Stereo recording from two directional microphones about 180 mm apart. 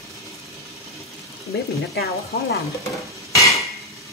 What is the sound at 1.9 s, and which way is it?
Speech, 65° left (ahead or behind).